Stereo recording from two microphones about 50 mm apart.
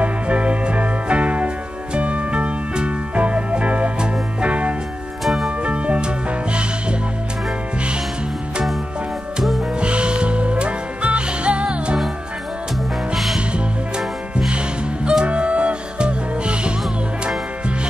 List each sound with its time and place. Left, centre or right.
0.0 s music: right
5.2 s music: centre
5.6 s music: right
9.8 s music: right
13.1 s music: centre
13.5 s music: right